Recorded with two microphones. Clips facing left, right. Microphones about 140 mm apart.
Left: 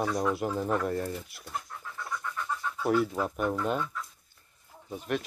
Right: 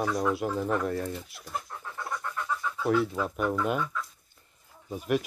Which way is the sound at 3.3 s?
5° right (ahead or behind).